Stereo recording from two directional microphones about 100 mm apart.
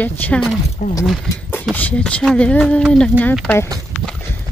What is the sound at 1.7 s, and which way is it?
Speech, 15° left (ahead or behind).